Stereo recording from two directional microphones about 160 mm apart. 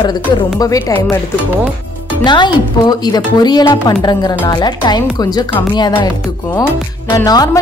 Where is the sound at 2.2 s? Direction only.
30° left (ahead or behind).